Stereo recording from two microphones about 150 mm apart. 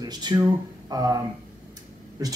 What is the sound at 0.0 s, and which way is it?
Speech, 30° right (ahead or behind).